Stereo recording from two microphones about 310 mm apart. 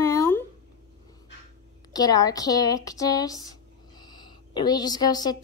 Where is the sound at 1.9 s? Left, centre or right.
Centre.